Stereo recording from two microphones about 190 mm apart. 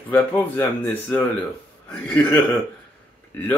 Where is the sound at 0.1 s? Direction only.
10° left (ahead or behind).